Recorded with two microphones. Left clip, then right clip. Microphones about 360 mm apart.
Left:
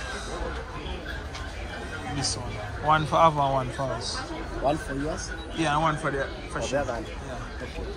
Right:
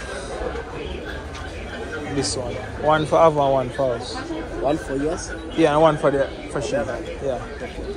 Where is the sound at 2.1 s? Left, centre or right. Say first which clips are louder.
Right 7 dB; centre.